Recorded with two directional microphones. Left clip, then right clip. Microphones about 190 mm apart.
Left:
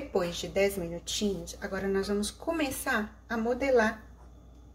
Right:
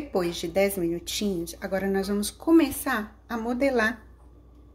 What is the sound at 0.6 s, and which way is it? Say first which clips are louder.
Speech: right 4 dB; 35° right (ahead or behind).